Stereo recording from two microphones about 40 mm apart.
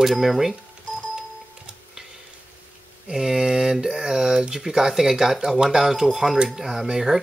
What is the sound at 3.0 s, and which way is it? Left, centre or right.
Speech, centre.